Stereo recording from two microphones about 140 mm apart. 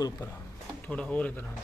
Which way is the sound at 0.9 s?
10° left (ahead or behind).